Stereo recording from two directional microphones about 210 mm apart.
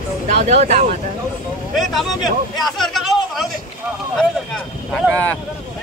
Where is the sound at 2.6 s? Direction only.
Centre (ahead or behind).